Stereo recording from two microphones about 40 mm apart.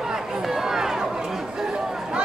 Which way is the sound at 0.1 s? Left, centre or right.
Centre.